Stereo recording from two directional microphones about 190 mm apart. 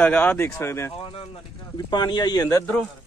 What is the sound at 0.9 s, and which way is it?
Speech, 30° left (ahead or behind).